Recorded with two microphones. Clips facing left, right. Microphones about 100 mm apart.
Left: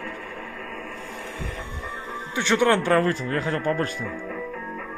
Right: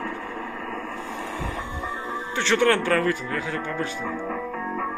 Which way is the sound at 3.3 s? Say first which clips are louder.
Left 4 dB; 40° left (ahead or behind).